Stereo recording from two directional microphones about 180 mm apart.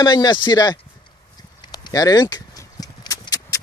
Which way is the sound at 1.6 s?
25° left (ahead or behind).